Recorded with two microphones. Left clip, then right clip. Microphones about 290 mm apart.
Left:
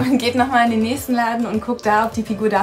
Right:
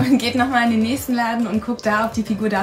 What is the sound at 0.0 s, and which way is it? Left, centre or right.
Speech, centre.